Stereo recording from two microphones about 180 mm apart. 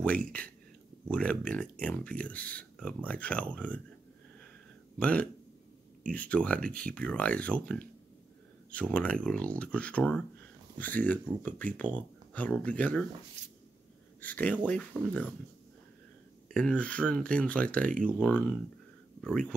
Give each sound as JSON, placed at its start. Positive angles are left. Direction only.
{"t": 0.0, "sound": "speech", "side_deg": 5}
{"t": 4.9, "sound": "speech", "side_deg": 5}
{"t": 13.4, "sound": "a sound", "side_deg": -40}
{"t": 14.2, "sound": "speech", "side_deg": 10}
{"t": 16.4, "sound": "speech", "side_deg": 5}